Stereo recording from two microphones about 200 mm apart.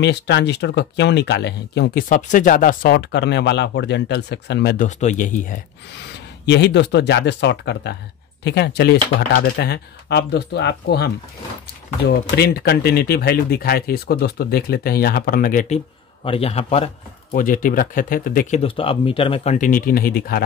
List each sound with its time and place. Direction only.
0.0 s speech: 60° left (ahead or behind)
2.0 s speech: 40° left (ahead or behind); by 4.7 s 60° left (ahead or behind)
4.7 s speech: 40° left (ahead or behind)
6.4 s speech: 60° left (ahead or behind)
16.3 s a man's voice: 30° left (ahead or behind)
17.4 s speech: 45° left (ahead or behind)
18.6 s speech: 25° left (ahead or behind); by 20.4 s 50° left (ahead or behind)